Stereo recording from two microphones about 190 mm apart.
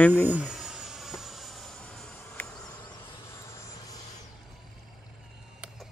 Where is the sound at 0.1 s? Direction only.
10° right (ahead or behind); by 2.4 s 10° left (ahead or behind).